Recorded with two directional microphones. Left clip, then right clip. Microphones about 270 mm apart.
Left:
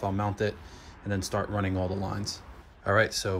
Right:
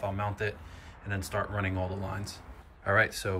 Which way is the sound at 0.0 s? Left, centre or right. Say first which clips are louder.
Left 3 dB; centre.